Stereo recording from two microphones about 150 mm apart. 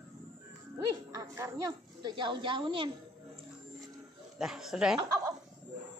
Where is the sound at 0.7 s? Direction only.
20° right (ahead or behind).